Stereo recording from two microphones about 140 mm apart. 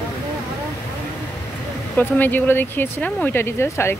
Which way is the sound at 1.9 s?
15° left (ahead or behind).